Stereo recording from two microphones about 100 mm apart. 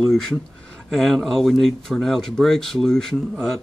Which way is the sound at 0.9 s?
5° left (ahead or behind).